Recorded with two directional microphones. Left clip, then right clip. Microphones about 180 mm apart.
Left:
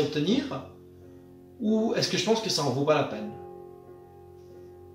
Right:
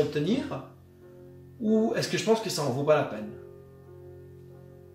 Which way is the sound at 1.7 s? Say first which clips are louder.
Even; 10° right (ahead or behind).